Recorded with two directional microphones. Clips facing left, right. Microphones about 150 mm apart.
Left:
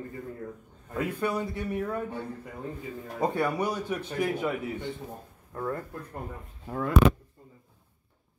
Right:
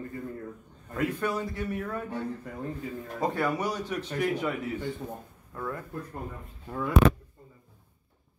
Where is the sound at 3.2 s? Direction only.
15° left (ahead or behind).